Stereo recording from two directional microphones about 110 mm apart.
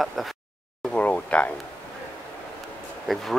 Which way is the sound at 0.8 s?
10° left (ahead or behind).